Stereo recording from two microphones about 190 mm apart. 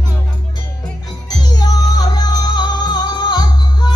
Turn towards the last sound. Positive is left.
turn(degrees=20)  # may be behind; listen again after turning